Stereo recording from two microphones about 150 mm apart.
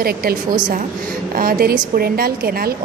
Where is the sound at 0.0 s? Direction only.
85° right.